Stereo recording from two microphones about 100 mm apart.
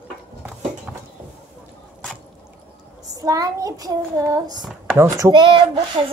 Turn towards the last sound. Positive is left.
turn(degrees=-55)  # may be behind; listen again after turning